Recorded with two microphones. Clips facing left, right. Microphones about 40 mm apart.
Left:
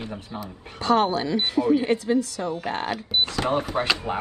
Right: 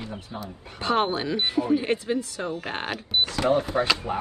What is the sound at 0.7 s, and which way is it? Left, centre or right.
Speech, right.